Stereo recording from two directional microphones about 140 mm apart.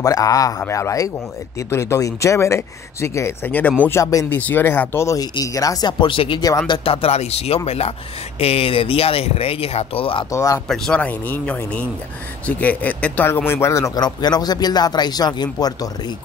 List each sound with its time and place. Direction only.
0.0 s speech: 25° left (ahead or behind); by 10.2 s 40° left (ahead or behind)
10.3 s speech: 25° left (ahead or behind)
10.7 s speech: 10° left (ahead or behind); by 16.2 s 30° left (ahead or behind)